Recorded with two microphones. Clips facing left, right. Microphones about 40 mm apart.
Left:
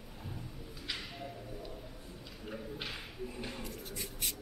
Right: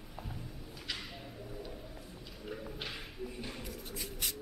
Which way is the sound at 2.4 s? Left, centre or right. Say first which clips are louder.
Even; centre.